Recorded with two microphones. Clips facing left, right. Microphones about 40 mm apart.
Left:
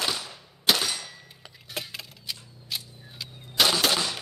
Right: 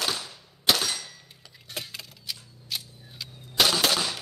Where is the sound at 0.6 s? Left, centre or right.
Centre.